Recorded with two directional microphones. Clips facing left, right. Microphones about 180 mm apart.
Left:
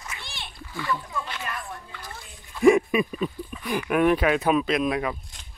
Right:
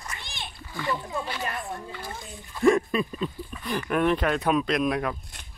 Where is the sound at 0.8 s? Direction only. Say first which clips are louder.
Even; 20° right (ahead or behind).